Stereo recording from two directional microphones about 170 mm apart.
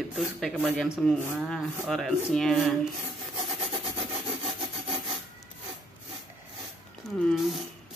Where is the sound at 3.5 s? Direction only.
35° right (ahead or behind).